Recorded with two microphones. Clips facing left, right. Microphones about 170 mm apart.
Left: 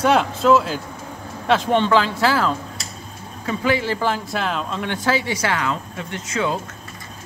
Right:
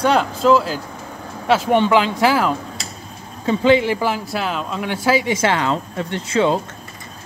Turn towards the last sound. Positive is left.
turn(degrees=-30)  # may be behind; listen again after turning